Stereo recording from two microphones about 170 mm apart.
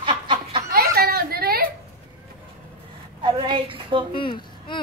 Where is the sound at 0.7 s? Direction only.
65° right (ahead or behind).